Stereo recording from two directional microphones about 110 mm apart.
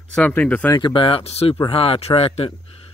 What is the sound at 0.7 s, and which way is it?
Speech, 45° left (ahead or behind).